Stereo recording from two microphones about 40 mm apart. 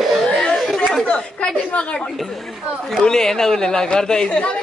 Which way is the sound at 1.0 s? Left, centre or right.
Left.